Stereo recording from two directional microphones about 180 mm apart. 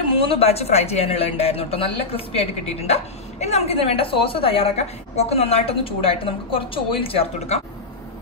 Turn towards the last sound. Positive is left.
turn(degrees=35)  # may be behind; listen again after turning